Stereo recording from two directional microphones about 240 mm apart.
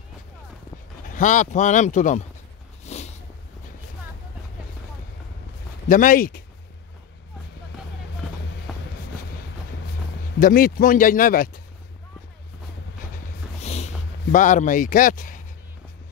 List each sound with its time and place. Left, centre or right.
1.1 s speech: left
2.8 s a sound: left
5.9 s speech: left
10.4 s speech: left
13.6 s a sound: left
14.3 s speech: left